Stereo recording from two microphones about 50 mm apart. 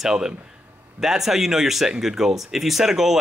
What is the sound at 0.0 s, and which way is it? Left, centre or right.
Speech, centre.